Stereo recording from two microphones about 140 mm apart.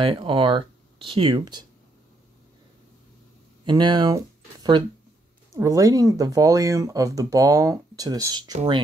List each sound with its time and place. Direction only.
0.0 s speech: 35° right (ahead or behind)
3.6 s speech: 30° right (ahead or behind)
5.5 s speech: 25° right (ahead or behind)